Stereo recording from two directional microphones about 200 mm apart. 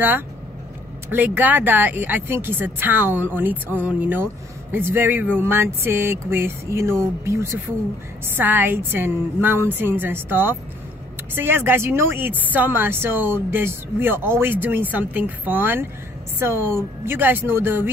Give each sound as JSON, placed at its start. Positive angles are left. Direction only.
{"t": 1.1, "sound": "speech", "side_deg": -10}